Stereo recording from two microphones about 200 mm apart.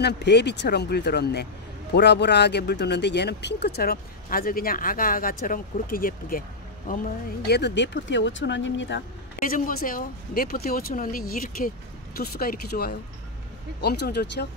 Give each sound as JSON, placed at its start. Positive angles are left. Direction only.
{"t": 0.0, "sound": "speech", "side_deg": 60}
{"t": 7.4, "sound": "speech", "side_deg": 55}
{"t": 9.4, "sound": "speech", "side_deg": 45}